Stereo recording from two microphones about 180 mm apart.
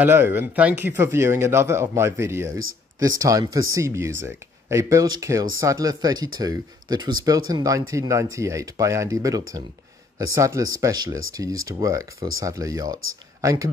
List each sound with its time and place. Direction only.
0.0 s speech: 10° right (ahead or behind)